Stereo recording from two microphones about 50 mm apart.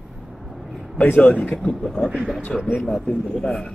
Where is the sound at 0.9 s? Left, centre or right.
Left.